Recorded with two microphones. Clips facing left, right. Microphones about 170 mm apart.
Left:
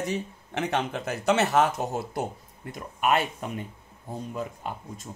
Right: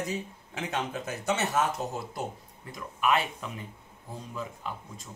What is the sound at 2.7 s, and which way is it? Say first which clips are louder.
Speech: left 2 dB; 45° left (ahead or behind).